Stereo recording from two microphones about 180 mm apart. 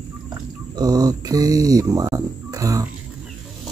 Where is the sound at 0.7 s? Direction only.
20° right (ahead or behind).